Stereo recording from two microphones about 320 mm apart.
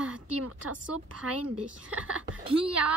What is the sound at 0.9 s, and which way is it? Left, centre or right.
Speech, right.